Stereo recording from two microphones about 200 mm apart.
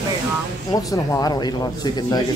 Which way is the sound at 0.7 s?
20° left (ahead or behind).